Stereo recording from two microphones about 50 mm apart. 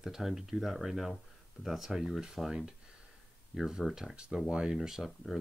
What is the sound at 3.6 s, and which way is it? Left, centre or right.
Speech, centre.